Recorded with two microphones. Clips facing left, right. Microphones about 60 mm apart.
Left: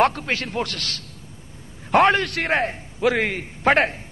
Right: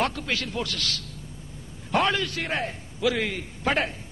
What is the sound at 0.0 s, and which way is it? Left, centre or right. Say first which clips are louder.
A man's voice: left 7 dB; left.